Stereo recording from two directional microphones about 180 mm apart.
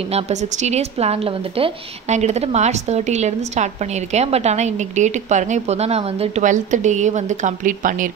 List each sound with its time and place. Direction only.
0.1 s a woman's voice: 40° right (ahead or behind)